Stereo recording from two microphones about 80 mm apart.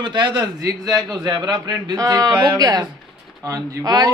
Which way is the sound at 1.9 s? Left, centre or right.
Right.